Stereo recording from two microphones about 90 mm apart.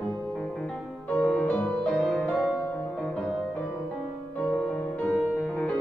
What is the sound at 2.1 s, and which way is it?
Music, centre (ahead or behind).